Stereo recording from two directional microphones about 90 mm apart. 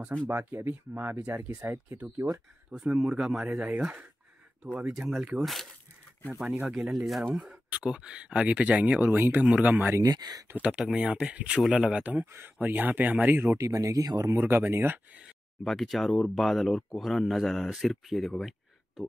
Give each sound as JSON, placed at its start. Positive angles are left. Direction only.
{"t": 0.3, "sound": "speech", "side_deg": -25}
{"t": 2.7, "sound": "speech", "side_deg": -5}
{"t": 5.4, "sound": "speech", "side_deg": 0}
{"t": 6.6, "sound": "speech", "side_deg": -10}
{"t": 7.1, "sound": "speech", "side_deg": 0}
{"t": 7.4, "sound": "speech", "side_deg": -15}
{"t": 9.8, "sound": "speech", "side_deg": -35}
{"t": 10.1, "sound": "speech", "side_deg": -50}
{"t": 10.5, "sound": "speech", "side_deg": -10}
{"t": 13.6, "sound": "speech", "side_deg": -40}
{"t": 15.6, "sound": "speech", "side_deg": 0}